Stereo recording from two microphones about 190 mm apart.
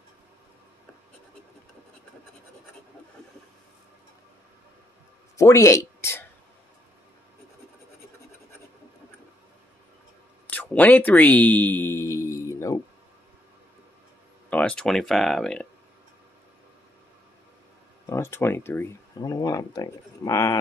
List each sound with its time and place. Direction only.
5.4 s a sound: 15° left (ahead or behind)
10.5 s speech: 10° left (ahead or behind)
14.5 s speech: 5° left (ahead or behind)
18.0 s speech: 15° left (ahead or behind)